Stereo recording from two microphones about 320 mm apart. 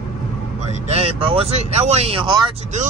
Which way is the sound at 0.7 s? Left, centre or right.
Centre.